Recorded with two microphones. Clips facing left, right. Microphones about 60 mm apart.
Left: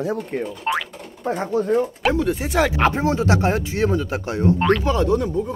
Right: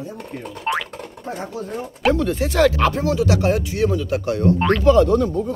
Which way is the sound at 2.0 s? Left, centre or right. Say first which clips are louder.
Right 1 dB; centre.